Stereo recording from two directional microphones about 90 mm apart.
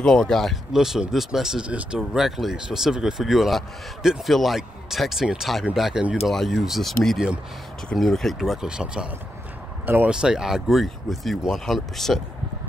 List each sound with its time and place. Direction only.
0.0 s speech: 5° left (ahead or behind)
9.8 s speech: 20° right (ahead or behind)
10.2 s speech: 5° right (ahead or behind)